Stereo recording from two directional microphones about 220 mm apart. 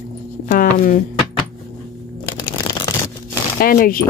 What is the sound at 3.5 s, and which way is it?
Speech, 40° left (ahead or behind).